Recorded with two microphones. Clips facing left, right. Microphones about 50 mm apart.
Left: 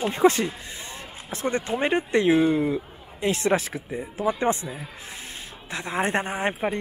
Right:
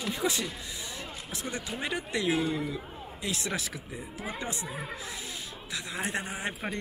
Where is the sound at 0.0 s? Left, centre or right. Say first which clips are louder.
Left 11 dB; left.